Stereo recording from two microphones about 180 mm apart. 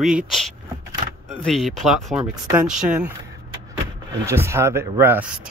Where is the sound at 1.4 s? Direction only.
Centre (ahead or behind).